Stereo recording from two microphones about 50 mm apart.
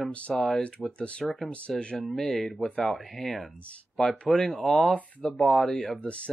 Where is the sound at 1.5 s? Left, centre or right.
Left.